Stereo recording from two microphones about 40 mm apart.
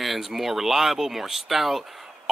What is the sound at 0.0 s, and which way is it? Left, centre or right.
Speech, centre.